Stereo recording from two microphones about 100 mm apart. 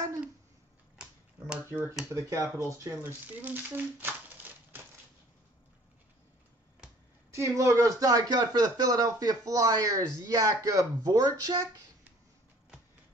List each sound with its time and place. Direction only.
1.7 s speech: 25° right (ahead or behind)
7.2 s speech: 30° right (ahead or behind)